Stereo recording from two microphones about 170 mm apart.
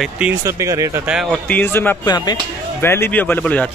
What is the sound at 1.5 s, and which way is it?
Speech, 10° left (ahead or behind).